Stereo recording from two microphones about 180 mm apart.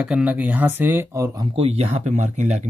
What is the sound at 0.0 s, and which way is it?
Speech, 5° right (ahead or behind).